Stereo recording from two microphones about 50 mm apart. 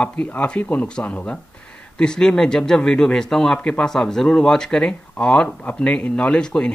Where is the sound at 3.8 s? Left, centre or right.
Centre.